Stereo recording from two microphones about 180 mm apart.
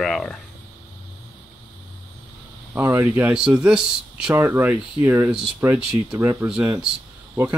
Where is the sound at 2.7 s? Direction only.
10° right (ahead or behind).